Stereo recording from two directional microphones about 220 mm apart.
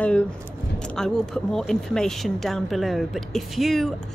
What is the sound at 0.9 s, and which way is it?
Speech, 5° left (ahead or behind).